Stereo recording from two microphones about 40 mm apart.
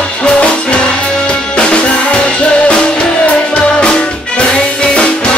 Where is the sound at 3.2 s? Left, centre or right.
Left.